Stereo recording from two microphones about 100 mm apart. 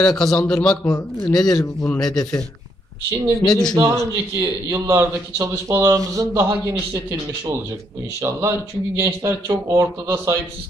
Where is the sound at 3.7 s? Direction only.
30° right (ahead or behind).